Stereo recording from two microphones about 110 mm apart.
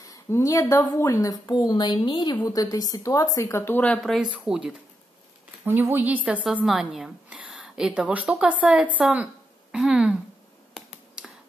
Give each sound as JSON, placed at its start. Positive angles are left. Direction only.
{"t": 0.0, "sound": "a woman's voice", "side_deg": 30}
{"t": 4.0, "sound": "speech", "side_deg": 0}
{"t": 5.7, "sound": "a woman's voice", "side_deg": -20}
{"t": 6.6, "sound": "a woman's voice", "side_deg": 0}
{"t": 11.2, "sound": "finger snapping", "side_deg": -10}